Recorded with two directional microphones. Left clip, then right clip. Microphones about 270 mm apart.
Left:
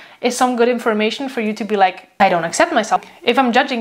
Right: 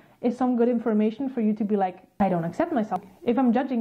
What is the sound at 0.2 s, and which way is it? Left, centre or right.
Speech, centre.